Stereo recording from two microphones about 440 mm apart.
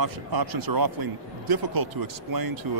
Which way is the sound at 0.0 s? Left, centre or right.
Right.